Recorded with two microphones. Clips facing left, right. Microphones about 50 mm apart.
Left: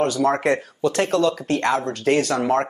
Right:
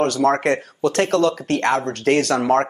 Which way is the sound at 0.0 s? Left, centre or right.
Right.